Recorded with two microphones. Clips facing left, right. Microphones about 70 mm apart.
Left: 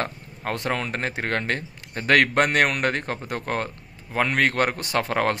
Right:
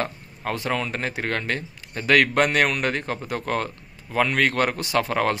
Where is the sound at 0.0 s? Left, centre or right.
Left.